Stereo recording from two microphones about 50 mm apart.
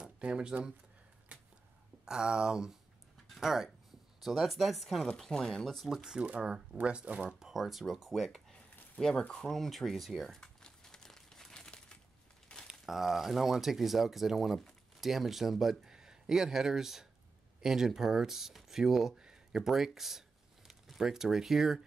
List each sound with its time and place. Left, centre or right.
0.0 s speech: centre
1.3 s a sound: right
2.0 s speech: centre
5.3 s speech: centre
6.0 s speech: centre
7.3 s speech: centre
8.1 s speech: centre
10.4 s crumpling: centre
12.8 s speech: centre
19.1 s a sound: centre
19.6 s a sound: centre
21.0 s speech: centre